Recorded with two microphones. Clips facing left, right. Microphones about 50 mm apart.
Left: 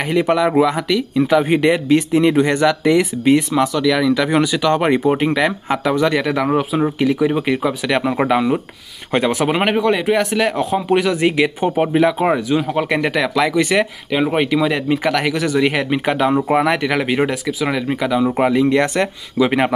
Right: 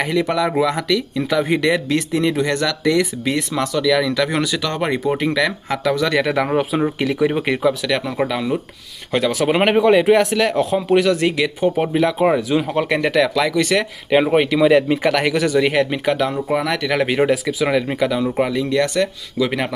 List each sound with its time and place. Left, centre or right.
0.1 s speech: left
0.6 s speech: centre
1.5 s speech: left; by 4.1 s centre
4.1 s speech: centre
6.1 s speech: centre
7.9 s speech: left
9.5 s speech: centre
14.2 s speech: centre
15.8 s speech: centre
16.9 s speech: centre; by 19.7 s left